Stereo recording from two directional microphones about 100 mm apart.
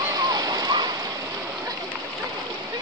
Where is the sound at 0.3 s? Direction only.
40° right (ahead or behind).